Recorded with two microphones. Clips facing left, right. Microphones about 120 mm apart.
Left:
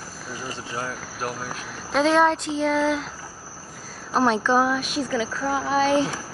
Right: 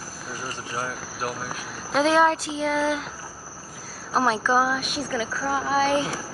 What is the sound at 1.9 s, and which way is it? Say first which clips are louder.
Speech: left 1 dB; centre (ahead or behind).